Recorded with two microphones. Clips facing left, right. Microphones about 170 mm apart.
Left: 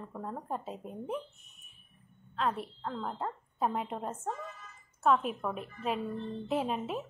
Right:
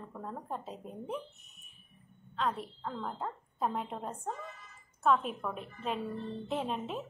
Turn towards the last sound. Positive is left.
turn(degrees=5)  # may be behind; listen again after turning